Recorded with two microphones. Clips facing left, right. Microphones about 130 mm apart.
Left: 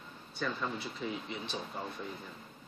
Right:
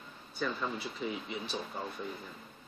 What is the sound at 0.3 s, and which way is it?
Speech, 5° right (ahead or behind).